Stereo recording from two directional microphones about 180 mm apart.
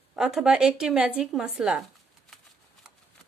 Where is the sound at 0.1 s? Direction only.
5° right (ahead or behind).